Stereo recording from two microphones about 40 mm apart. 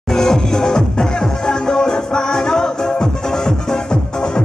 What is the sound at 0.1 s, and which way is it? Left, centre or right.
Music, centre.